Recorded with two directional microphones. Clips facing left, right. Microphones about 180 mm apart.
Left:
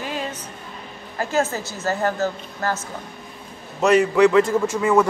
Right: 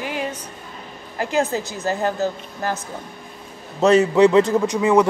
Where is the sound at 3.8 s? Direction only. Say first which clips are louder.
Right 2 dB; 25° right (ahead or behind).